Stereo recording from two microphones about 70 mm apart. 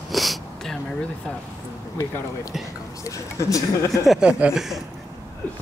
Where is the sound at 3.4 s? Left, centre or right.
Left.